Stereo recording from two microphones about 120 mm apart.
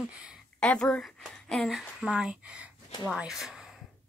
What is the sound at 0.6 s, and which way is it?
A woman's voice, 5° left (ahead or behind).